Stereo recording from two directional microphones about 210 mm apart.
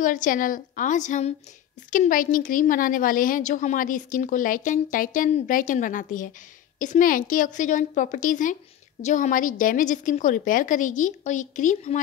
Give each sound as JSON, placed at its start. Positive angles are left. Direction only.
{"t": 0.0, "sound": "a woman's voice", "side_deg": 40}